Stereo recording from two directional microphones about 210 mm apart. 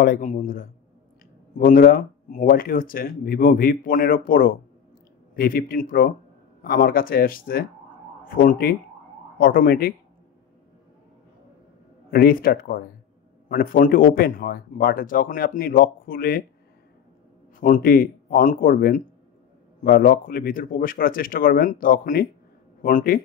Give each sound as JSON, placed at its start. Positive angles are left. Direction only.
{"t": 0.0, "sound": "speech", "side_deg": 40}
{"t": 12.1, "sound": "speech", "side_deg": 45}
{"t": 17.6, "sound": "a man's voice", "side_deg": 40}